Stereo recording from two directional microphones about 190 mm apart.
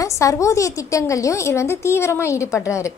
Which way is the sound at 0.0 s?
15° left (ahead or behind).